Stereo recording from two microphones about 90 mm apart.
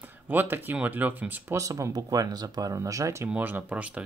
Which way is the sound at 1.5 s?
35° right (ahead or behind).